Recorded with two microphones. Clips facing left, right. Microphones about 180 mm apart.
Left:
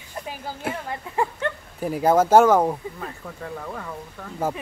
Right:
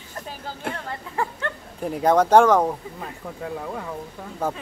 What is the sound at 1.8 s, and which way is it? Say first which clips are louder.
Speech: even; 5° left (ahead or behind).